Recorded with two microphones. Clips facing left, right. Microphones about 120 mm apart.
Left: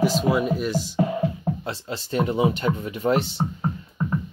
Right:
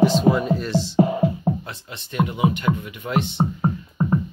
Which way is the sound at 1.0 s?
25° right (ahead or behind).